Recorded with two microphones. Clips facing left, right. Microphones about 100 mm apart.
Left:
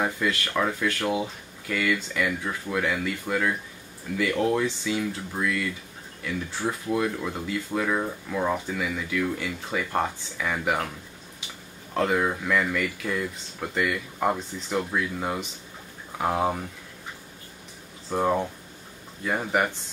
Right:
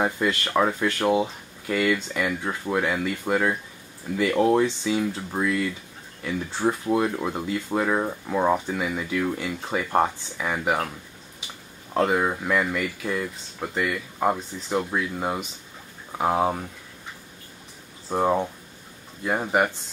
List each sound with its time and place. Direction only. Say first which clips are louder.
0.0 s speech: right 2 dB; 25° right (ahead or behind)
11.9 s speech: right 2 dB; 15° right (ahead or behind)
13.2 s speech: right 1 dB; 5° right (ahead or behind)
14.7 s speech: right 2 dB; 15° right (ahead or behind)
16.2 s speech: right 2 dB; 10° right (ahead or behind)
18.1 s speech: right 2 dB; 15° right (ahead or behind)